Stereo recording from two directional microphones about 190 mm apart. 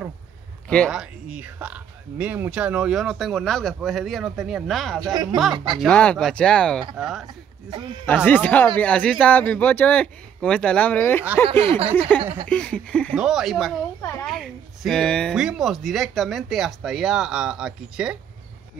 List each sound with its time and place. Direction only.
0.7 s speech: centre (ahead or behind)
5.1 s speech: 20° right (ahead or behind)
5.8 s speech: 5° left (ahead or behind)
8.3 s a man's voice: 10° left (ahead or behind)